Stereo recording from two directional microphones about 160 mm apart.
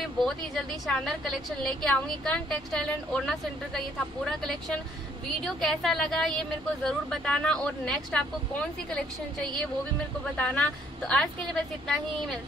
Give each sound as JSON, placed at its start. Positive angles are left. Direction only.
{"t": 0.2, "sound": "a woman's voice", "side_deg": 0}